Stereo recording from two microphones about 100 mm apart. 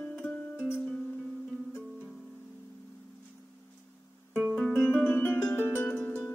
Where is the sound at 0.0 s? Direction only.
15° left (ahead or behind).